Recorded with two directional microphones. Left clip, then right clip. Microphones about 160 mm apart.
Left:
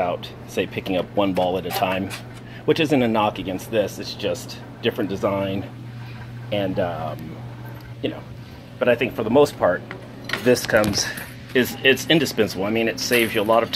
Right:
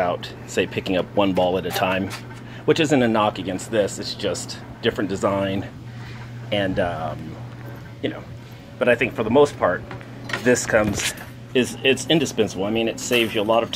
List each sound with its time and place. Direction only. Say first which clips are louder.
0.0 s speech: right 1 dB; 20° right (ahead or behind)
8.0 s speech: even; 5° right (ahead or behind); by 9.8 s 10° left (ahead or behind)
10.4 s speech: left 1 dB; centre (ahead or behind)